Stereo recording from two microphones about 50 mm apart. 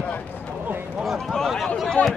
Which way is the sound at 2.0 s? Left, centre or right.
Left.